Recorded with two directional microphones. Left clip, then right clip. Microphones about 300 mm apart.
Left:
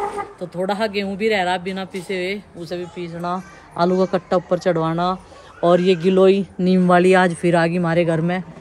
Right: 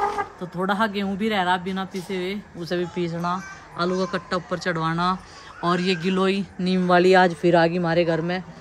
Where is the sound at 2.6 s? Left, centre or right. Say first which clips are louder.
Right 2 dB; right.